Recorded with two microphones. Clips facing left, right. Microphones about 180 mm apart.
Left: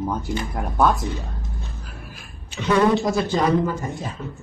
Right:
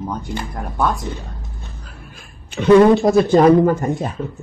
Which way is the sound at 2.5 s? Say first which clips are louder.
Right 8 dB; 55° right (ahead or behind).